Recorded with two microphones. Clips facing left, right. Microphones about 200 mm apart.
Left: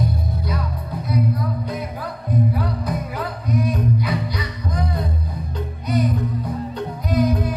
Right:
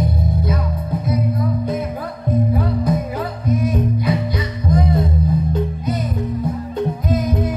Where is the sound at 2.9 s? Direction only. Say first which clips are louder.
Right 5 dB; 25° right (ahead or behind).